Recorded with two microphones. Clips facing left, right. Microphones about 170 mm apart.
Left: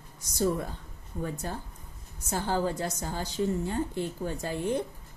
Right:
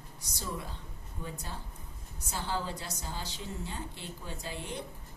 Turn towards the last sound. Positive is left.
turn(degrees=50)  # may be behind; listen again after turning